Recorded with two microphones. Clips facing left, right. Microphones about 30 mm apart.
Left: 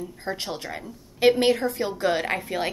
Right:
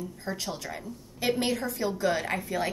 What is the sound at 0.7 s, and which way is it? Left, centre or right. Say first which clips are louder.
Speech: left 3 dB; left.